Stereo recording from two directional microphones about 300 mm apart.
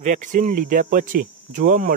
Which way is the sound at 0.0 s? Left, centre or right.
Right.